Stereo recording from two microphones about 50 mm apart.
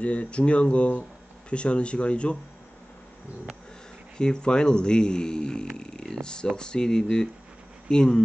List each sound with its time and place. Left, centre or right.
0.0 s speech: left
4.2 s speech: centre
5.8 s a sound: centre
6.5 s speech: centre